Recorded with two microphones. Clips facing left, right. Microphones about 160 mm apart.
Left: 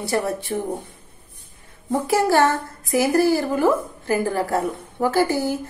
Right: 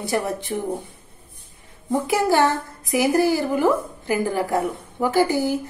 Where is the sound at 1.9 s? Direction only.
15° right (ahead or behind).